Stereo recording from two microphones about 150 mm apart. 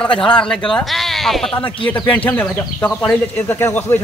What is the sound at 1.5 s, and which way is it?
Speech, 35° left (ahead or behind).